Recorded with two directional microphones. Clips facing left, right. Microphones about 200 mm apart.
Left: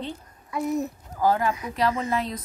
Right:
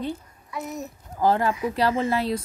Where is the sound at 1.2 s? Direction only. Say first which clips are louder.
Right 2 dB; 30° right (ahead or behind).